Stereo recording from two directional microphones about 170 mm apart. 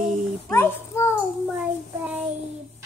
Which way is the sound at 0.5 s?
15° left (ahead or behind).